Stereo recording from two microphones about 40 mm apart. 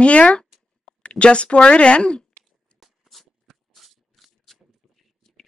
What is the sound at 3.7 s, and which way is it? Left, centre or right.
Shuffling cards, centre.